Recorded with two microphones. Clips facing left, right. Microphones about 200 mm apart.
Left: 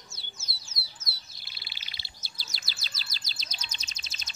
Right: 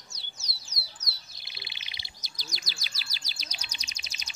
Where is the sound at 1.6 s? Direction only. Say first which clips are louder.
Right 3 dB; 20° right (ahead or behind).